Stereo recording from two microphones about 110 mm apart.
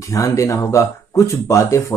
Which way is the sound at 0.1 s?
30° left (ahead or behind).